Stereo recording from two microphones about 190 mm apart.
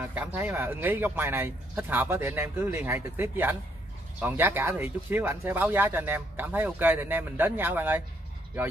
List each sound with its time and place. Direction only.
0.0 s speech: 10° right (ahead or behind)